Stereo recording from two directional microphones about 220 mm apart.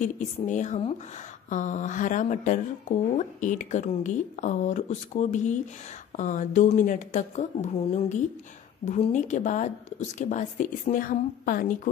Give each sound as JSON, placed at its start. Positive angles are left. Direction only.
{"t": 0.0, "sound": "a woman's voice", "side_deg": 35}